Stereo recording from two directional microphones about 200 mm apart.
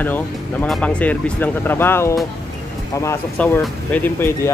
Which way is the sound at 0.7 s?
5° left (ahead or behind).